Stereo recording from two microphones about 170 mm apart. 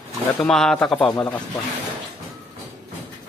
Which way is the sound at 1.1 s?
15° left (ahead or behind).